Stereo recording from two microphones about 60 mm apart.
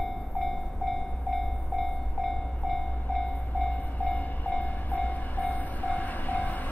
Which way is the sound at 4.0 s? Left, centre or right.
Left.